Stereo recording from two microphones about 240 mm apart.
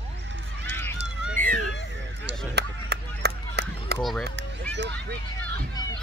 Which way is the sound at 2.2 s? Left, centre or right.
Right.